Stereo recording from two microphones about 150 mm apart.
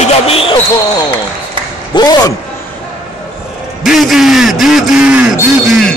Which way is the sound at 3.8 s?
Centre (ahead or behind).